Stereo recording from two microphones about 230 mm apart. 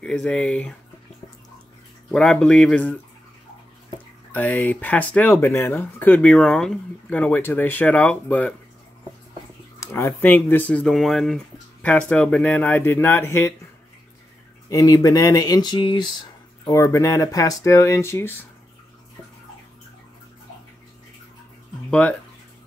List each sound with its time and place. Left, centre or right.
0.0 s speech: centre
2.0 s speech: centre
4.3 s speech: centre
9.8 s speech: centre
14.7 s speech: centre